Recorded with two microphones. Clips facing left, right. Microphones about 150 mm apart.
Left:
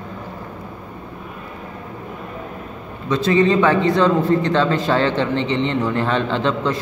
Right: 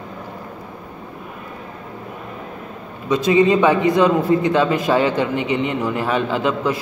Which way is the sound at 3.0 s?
15° right (ahead or behind).